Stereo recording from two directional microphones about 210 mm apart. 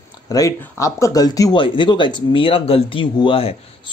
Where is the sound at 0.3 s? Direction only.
15° left (ahead or behind).